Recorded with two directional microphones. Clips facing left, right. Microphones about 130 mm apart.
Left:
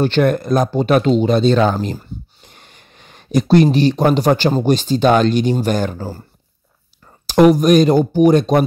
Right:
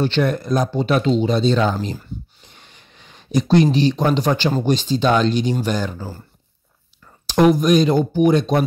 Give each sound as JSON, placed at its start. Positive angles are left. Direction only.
{"t": 0.0, "sound": "speech", "side_deg": 55}
{"t": 2.4, "sound": "a sound", "side_deg": 50}
{"t": 3.7, "sound": "speech", "side_deg": 50}
{"t": 7.5, "sound": "speech", "side_deg": 50}